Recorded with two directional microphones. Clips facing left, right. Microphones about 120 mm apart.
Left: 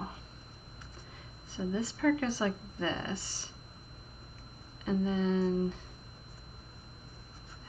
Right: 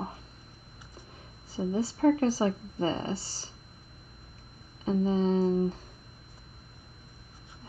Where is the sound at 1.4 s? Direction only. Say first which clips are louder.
Right 4 dB; 35° right (ahead or behind).